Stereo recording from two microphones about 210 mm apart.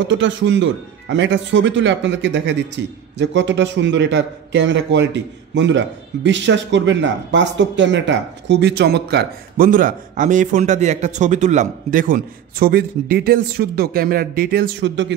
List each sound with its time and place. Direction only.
0.0 s a man's voice: 60° right (ahead or behind)